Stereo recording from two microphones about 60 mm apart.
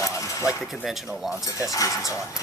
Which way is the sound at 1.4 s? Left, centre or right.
Left.